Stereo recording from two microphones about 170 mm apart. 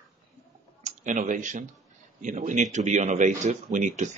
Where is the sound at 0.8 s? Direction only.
45° right (ahead or behind).